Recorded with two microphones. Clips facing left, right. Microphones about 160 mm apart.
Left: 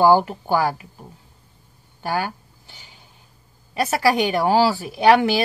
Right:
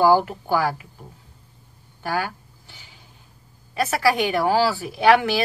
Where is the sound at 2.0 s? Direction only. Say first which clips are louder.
Left 1 dB; 25° left (ahead or behind).